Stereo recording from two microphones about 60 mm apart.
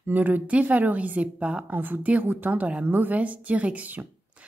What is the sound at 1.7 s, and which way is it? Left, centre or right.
Speech, right.